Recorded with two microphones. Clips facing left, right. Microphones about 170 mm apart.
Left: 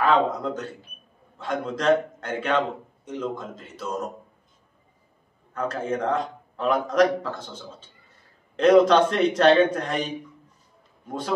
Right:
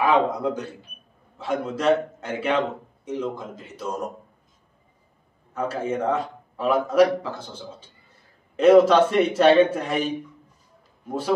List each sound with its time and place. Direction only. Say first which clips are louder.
0.0 s a man's voice: right 1 dB; 10° right (ahead or behind)
5.5 s a man's voice: right 1 dB; 10° right (ahead or behind)